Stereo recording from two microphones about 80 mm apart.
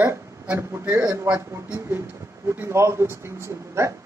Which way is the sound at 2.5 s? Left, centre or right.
Right.